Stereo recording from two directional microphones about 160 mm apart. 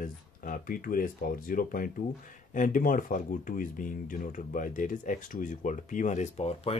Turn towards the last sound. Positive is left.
turn(degrees=40)  # may be behind; listen again after turning